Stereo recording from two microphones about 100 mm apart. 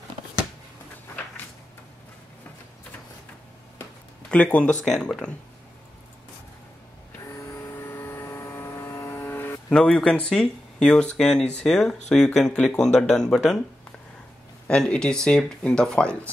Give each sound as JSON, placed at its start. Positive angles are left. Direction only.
{"t": 4.3, "sound": "speech", "side_deg": 15}
{"t": 7.7, "sound": "vehicle", "side_deg": 20}
{"t": 9.7, "sound": "speech", "side_deg": 10}
{"t": 14.7, "sound": "speech", "side_deg": 10}